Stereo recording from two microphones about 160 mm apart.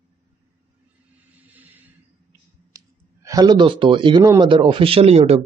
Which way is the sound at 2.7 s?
20° right (ahead or behind).